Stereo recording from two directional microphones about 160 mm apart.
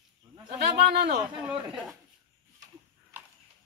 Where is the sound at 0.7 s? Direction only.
90° right.